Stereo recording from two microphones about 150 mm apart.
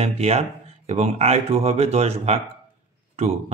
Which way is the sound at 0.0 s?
45° right (ahead or behind).